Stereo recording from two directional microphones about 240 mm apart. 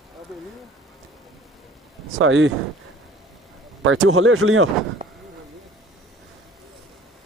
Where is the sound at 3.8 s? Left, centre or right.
Right.